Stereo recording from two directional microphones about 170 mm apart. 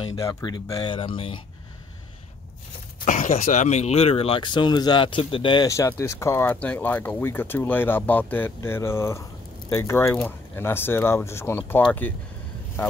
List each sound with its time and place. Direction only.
0.1 s speech: 20° left (ahead or behind)
3.1 s speech: 50° left (ahead or behind); by 5.7 s 30° left (ahead or behind)
5.7 s speech: 15° left (ahead or behind)